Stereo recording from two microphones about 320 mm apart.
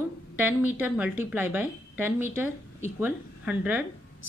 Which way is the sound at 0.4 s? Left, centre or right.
Centre.